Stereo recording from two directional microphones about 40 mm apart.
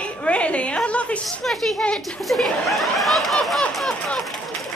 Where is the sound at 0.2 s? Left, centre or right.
Left.